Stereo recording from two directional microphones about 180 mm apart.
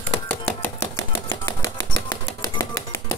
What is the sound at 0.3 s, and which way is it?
Typewriter, 15° left (ahead or behind).